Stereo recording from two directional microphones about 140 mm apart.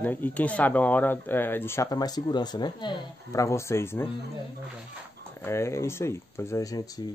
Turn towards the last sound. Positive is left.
turn(degrees=20)  # may be behind; listen again after turning